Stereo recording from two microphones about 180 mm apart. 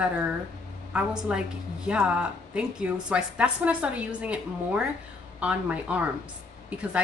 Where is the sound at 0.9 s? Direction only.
5° right (ahead or behind).